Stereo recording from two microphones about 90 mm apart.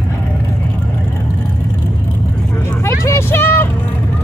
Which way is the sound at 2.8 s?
30° left (ahead or behind).